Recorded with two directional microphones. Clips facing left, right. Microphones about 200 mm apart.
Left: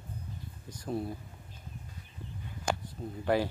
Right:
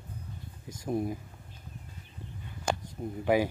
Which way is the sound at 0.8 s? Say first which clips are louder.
Right 4 dB; 15° right (ahead or behind).